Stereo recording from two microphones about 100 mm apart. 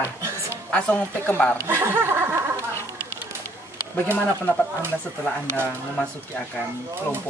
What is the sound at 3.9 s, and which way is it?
Speech, 20° left (ahead or behind).